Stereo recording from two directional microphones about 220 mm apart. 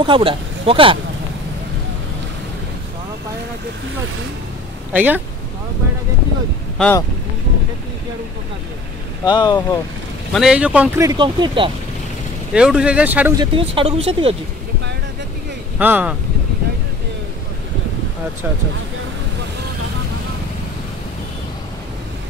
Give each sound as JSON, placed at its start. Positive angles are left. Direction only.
{"t": 0.0, "sound": "speech", "side_deg": -25}
{"t": 4.9, "sound": "speech", "side_deg": -5}
{"t": 6.8, "sound": "speech", "side_deg": 10}
{"t": 9.2, "sound": "speech", "side_deg": 20}
{"t": 10.3, "sound": "speech", "side_deg": -5}
{"t": 12.5, "sound": "speech", "side_deg": -5}
{"t": 13.4, "sound": "speech", "side_deg": -25}
{"t": 15.8, "sound": "speech", "side_deg": -5}